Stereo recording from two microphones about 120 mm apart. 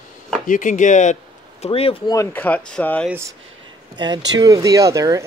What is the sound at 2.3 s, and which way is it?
Speech, 10° left (ahead or behind).